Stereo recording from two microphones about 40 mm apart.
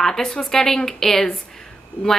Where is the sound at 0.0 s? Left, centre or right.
Centre.